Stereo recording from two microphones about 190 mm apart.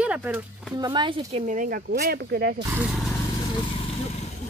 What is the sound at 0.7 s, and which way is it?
Speech, 20° right (ahead or behind).